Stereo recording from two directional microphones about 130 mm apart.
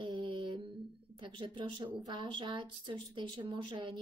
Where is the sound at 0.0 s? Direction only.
35° right (ahead or behind).